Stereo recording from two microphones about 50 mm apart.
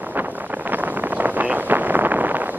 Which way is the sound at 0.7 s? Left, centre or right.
Right.